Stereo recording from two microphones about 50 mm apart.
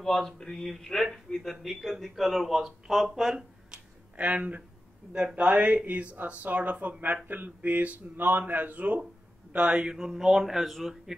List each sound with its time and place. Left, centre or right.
0.0 s speech: centre
4.2 s a man's voice: right
9.8 s speech: centre